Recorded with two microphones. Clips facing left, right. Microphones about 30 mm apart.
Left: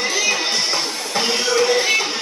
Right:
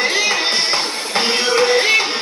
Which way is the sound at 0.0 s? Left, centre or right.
Right.